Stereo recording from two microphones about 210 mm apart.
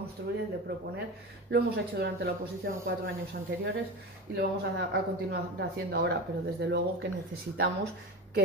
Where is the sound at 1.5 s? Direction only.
50° right (ahead or behind).